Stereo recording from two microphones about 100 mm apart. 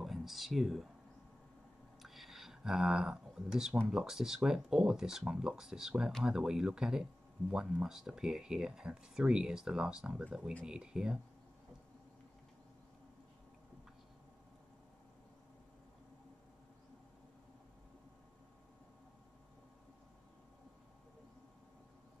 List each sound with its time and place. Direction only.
0.0 s speech: centre (ahead or behind)
2.0 s a sound: centre (ahead or behind)
3.9 s speech: 5° right (ahead or behind)